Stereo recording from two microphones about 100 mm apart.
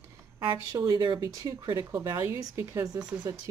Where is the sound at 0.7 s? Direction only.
40° right (ahead or behind).